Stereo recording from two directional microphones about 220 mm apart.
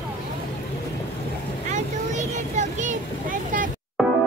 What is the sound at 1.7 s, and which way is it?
Vehicle, 35° right (ahead or behind).